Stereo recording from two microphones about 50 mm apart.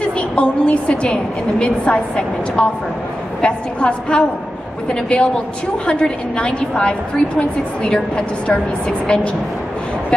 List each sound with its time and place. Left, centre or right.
0.0 s a woman's voice: left